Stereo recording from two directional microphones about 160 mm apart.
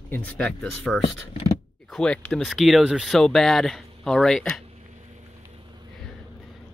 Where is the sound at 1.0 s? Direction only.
40° left (ahead or behind).